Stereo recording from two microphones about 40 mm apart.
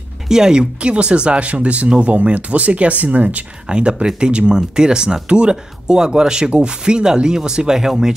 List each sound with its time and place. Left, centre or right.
0.3 s speech: centre; by 3.4 s right
3.6 s speech: right